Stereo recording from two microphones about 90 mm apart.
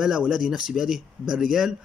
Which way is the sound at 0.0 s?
5° right (ahead or behind).